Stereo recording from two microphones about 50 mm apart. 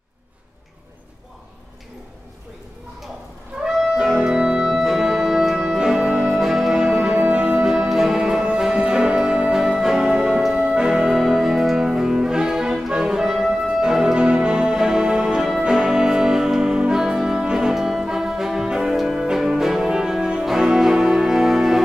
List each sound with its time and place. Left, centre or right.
3.6 s music: centre
7.6 s music: centre